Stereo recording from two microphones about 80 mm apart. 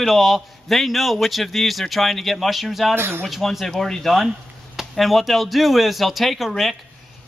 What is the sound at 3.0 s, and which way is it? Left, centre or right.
Speech, right.